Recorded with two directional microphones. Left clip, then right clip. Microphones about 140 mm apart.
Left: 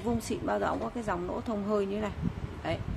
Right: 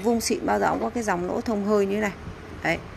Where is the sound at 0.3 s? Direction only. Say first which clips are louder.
Right 7 dB; 20° right (ahead or behind).